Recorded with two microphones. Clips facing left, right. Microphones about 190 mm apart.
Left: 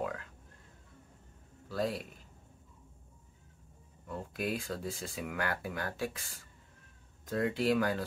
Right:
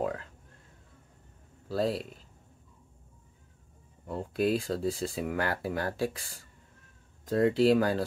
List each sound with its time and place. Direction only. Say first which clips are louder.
0.0 s a sound: right 5 dB; 35° right (ahead or behind)
1.7 s speech: right 5 dB; 30° right (ahead or behind)
4.0 s speech: right 8 dB; 35° right (ahead or behind)
7.2 s speech: right 7 dB; 30° right (ahead or behind)